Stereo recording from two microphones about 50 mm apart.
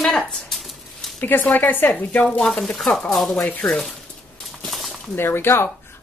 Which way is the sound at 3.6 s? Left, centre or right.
Centre.